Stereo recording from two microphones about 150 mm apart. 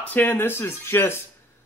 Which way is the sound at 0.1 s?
15° left (ahead or behind).